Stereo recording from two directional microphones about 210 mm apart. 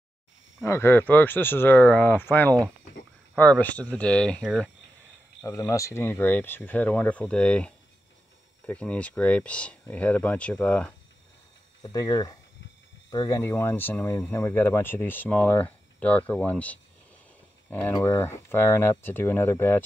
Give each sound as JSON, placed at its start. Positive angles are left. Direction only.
{"t": 0.6, "sound": "speech", "side_deg": 10}
{"t": 5.4, "sound": "speech", "side_deg": 15}
{"t": 11.8, "sound": "speech", "side_deg": 20}